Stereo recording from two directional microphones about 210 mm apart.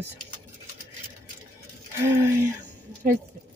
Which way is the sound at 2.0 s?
10° right (ahead or behind).